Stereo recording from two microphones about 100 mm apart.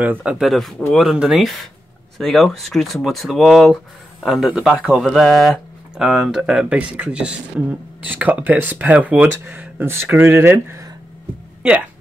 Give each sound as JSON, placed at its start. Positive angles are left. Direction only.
{"t": 0.0, "sound": "speech", "side_deg": -15}
{"t": 11.6, "sound": "speech", "side_deg": -10}